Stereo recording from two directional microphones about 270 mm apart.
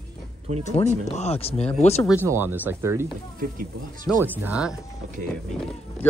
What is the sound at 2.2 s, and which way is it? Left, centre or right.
Speech, centre.